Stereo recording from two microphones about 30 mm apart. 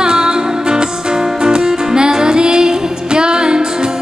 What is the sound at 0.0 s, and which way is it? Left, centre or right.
Music, right.